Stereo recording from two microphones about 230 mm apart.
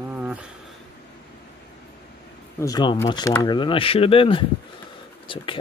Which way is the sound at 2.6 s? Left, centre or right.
Centre.